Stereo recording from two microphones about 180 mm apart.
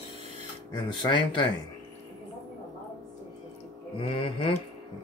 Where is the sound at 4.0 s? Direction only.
30° left (ahead or behind).